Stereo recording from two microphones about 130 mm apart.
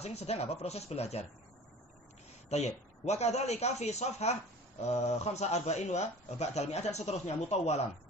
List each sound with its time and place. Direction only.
0.0 s speech: 55° left (ahead or behind)
2.5 s a man's voice: 55° left (ahead or behind)